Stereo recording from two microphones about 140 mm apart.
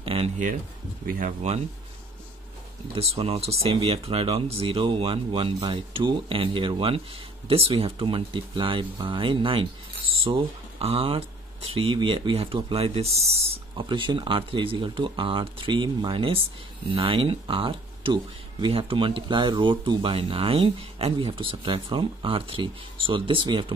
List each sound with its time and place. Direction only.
0.0 s a sound: 40° right (ahead or behind)
1.0 s speech: 90° right
2.9 s speech: 45° right (ahead or behind)
13.7 s speech: 35° right (ahead or behind)